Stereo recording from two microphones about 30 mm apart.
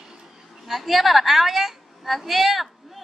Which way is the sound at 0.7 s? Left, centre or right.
Centre.